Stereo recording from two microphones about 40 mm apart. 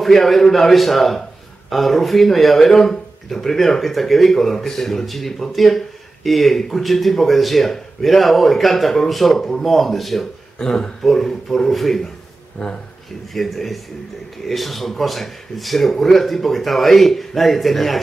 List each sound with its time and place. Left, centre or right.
0.0 s speech: centre
10.6 s speech: centre
12.6 s speech: centre
13.3 s speech: centre